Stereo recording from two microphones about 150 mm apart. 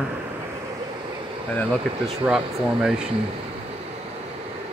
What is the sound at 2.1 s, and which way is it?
Speech, 5° right (ahead or behind).